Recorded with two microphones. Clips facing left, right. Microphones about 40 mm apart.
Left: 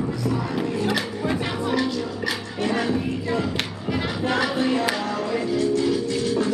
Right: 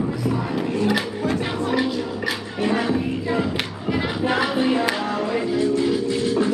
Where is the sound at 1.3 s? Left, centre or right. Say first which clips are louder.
Right 1 dB; centre.